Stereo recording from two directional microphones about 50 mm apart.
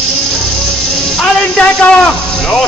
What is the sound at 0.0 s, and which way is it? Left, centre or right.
Music, centre.